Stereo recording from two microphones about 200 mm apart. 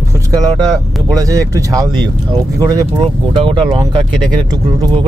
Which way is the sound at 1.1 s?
15° right (ahead or behind).